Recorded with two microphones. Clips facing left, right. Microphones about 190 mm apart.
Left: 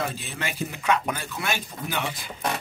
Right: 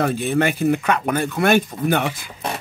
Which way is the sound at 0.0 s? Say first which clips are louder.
Right 12 dB; 55° right (ahead or behind).